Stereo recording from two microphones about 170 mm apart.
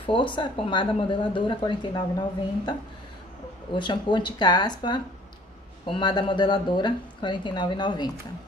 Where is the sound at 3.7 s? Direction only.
25° left (ahead or behind).